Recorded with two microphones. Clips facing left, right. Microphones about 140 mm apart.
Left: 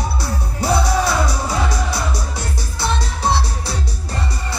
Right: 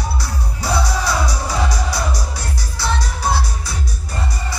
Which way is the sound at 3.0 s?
25° left (ahead or behind).